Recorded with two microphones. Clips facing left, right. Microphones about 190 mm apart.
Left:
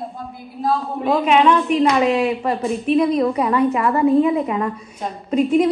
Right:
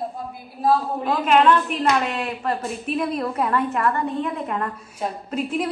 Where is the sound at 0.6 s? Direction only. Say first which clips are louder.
Left 1 dB; centre (ahead or behind).